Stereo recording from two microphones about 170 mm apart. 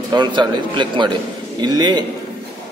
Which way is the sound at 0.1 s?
25° right (ahead or behind).